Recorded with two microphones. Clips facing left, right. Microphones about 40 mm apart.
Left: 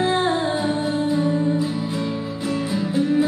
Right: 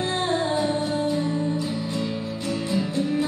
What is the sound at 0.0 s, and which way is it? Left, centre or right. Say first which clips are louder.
Music: left 4 dB; centre.